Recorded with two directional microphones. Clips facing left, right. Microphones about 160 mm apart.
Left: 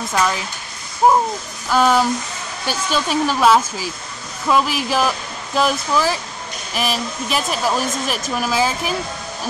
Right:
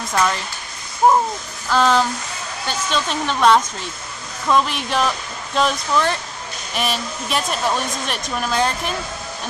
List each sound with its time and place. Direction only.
0.1 s speech: centre (ahead or behind)
1.7 s a sound: 10° left (ahead or behind)
2.6 s speech: 10° left (ahead or behind)